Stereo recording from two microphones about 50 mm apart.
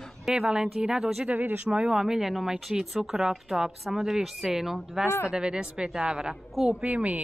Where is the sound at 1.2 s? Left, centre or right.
Right.